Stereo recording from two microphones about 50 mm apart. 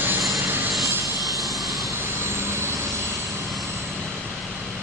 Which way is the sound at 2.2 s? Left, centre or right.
Right.